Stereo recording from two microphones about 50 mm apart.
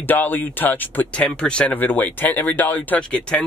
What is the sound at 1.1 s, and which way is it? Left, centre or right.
Speech, left.